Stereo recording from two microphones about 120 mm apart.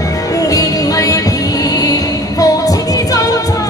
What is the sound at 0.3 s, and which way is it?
Music, 30° left (ahead or behind).